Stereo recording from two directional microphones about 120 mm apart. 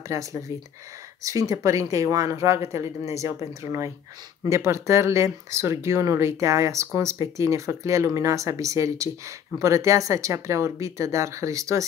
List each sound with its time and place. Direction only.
0.1 s speech: 25° right (ahead or behind)